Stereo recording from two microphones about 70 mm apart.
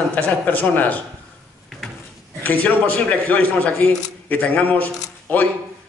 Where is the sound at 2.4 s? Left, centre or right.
Left.